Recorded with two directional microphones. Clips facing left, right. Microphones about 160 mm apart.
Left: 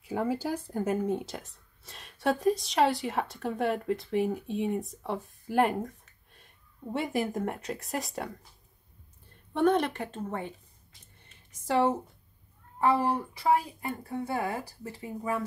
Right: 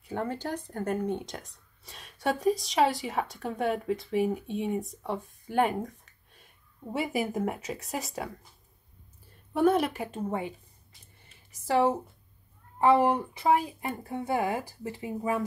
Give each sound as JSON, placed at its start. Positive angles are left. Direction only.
{"t": 0.0, "sound": "speech", "side_deg": 5}
{"t": 9.5, "sound": "a woman's voice", "side_deg": -5}
{"t": 11.6, "sound": "speech", "side_deg": 0}
{"t": 12.8, "sound": "speech", "side_deg": -20}